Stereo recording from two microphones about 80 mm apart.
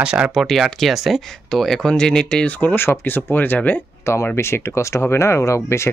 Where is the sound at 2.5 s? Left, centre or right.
Left.